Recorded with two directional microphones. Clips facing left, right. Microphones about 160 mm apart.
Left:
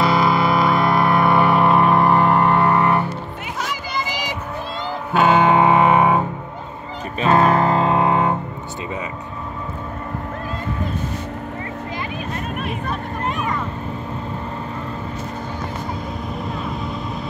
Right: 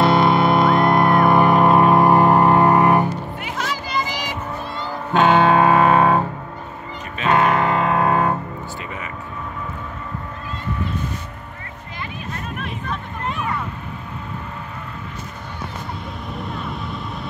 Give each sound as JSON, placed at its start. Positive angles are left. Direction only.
{"t": 0.0, "sound": "music", "side_deg": 0}
{"t": 2.0, "sound": "vehicle", "side_deg": -40}
{"t": 2.3, "sound": "vehicle", "side_deg": -15}
{"t": 5.1, "sound": "music", "side_deg": 10}
{"t": 7.2, "sound": "music", "side_deg": 35}